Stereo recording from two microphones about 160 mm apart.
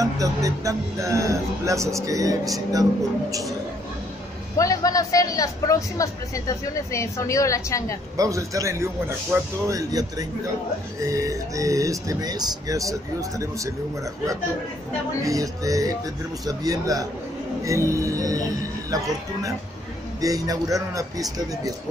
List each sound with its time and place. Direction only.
0.0 s speech: 20° right (ahead or behind)
4.6 s speech: 20° left (ahead or behind)
8.2 s speech: 20° right (ahead or behind)
15.2 s speech: 20° right (ahead or behind)
20.2 s speech: 20° right (ahead or behind)